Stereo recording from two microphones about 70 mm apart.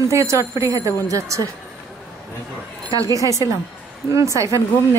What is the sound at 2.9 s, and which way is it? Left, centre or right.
Speech, right.